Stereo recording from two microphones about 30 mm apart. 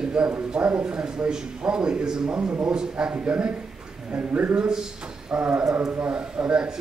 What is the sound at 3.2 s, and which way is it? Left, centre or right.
Speech, right.